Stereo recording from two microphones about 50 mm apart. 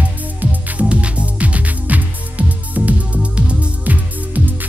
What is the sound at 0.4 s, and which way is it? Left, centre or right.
Music, right.